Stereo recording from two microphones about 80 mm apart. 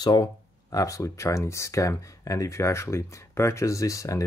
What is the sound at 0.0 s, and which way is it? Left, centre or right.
Speech, left.